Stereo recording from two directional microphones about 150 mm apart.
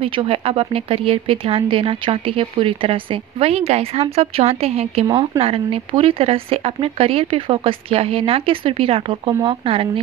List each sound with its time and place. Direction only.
0.0 s speech: 35° right (ahead or behind)